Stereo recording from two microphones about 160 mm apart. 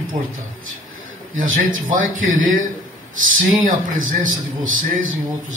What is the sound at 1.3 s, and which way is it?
A man's voice, 60° right (ahead or behind).